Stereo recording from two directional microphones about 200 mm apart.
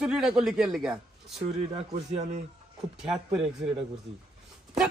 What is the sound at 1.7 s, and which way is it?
Speech, 35° right (ahead or behind).